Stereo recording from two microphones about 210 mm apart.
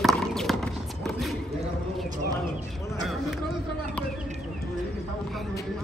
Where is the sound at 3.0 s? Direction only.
Centre (ahead or behind).